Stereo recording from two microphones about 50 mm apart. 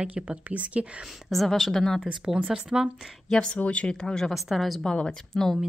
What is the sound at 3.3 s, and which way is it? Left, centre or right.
Speech, left.